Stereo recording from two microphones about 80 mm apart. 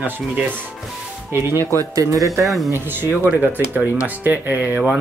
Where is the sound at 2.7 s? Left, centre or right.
Right.